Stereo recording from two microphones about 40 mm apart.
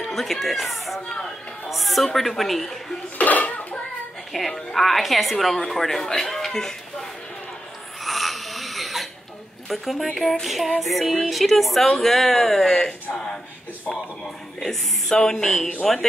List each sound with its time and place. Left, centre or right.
0.1 s a woman's voice: centre
1.0 s speech: centre
1.7 s a woman's voice: centre
3.2 s a sound: left
4.3 s a woman's voice: centre
6.1 s a sound: centre
8.0 s snoring: centre
9.7 s a woman's voice: centre
13.1 s a sound: left
14.2 s a man's voice: centre